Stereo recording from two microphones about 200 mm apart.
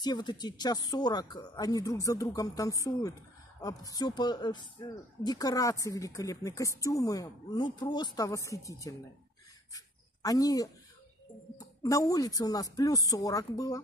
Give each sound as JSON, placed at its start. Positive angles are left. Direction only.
{"t": 0.0, "sound": "speech", "side_deg": 20}
{"t": 9.8, "sound": "a sound", "side_deg": 20}
{"t": 11.5, "sound": "speech", "side_deg": 15}